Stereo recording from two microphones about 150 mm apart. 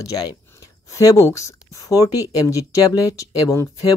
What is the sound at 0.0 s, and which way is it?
Speech, 25° left (ahead or behind).